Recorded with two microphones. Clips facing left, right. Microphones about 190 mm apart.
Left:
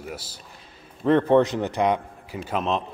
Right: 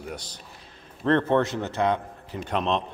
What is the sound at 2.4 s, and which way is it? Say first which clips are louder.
Speech: even; centre (ahead or behind).